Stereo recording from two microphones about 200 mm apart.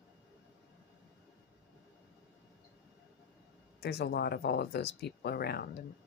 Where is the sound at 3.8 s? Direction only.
55° left (ahead or behind).